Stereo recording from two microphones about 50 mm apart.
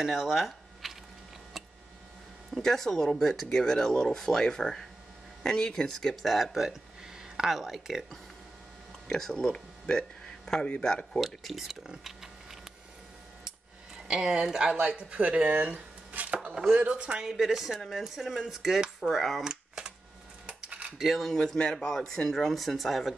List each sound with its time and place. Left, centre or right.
0.0 s a sound: centre
2.6 s speech: centre
6.3 s speech: centre
9.0 s speech: centre
11.1 s speech: centre
12.0 s mechanisms: centre
14.0 s speech: centre
14.8 s speech: right
17.2 s speech: centre
19.4 s a sound: centre
20.4 s a sound: right
21.0 s speech: centre
21.4 s speech: centre